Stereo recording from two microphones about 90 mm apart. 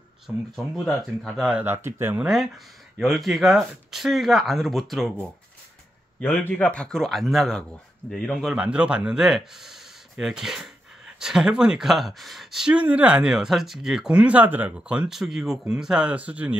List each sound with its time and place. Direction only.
0.3 s speech: 20° right (ahead or behind)
1.2 s speech: 5° right (ahead or behind)
1.6 s speech: 25° right (ahead or behind)
2.1 s speech: 5° right (ahead or behind)
6.4 s speech: 15° left (ahead or behind)
8.5 s speech: 10° right (ahead or behind)
12.7 s speech: 15° right (ahead or behind)